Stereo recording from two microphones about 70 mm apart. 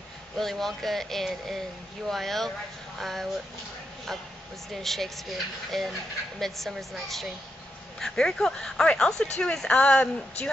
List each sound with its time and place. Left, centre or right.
0.4 s speech: centre
4.7 s speech: centre